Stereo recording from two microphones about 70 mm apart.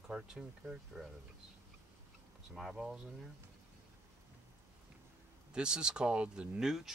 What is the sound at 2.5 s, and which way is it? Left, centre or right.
Speech, centre.